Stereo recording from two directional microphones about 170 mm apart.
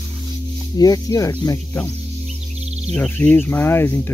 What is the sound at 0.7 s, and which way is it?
Speech, 20° left (ahead or behind).